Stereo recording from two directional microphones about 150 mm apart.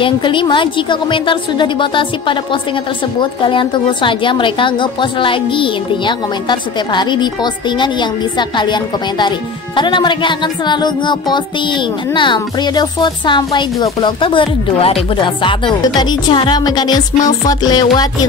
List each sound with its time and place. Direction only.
0.0 s a woman's voice: 35° left (ahead or behind)